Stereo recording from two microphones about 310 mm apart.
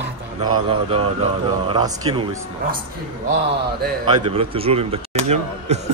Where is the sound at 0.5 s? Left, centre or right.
Centre.